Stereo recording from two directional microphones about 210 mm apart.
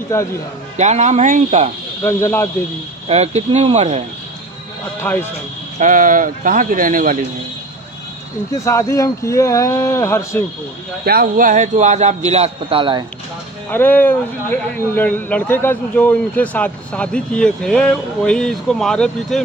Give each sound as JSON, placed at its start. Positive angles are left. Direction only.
{"t": 0.1, "sound": "a man's voice", "side_deg": 15}
{"t": 0.7, "sound": "a man's voice", "side_deg": -35}
{"t": 2.0, "sound": "a man's voice", "side_deg": 10}
{"t": 3.1, "sound": "a man's voice", "side_deg": -30}
{"t": 5.8, "sound": "a man's voice", "side_deg": -40}
{"t": 8.6, "sound": "a man's voice", "side_deg": 15}
{"t": 11.1, "sound": "a man's voice", "side_deg": -40}
{"t": 13.7, "sound": "a man's voice", "side_deg": 10}